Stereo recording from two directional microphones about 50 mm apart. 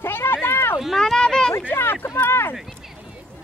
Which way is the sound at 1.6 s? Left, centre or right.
Left.